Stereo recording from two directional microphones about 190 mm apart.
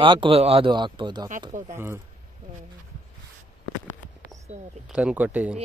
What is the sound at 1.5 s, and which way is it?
Speech, 40° right (ahead or behind).